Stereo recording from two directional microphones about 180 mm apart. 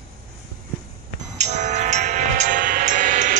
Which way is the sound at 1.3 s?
40° right (ahead or behind).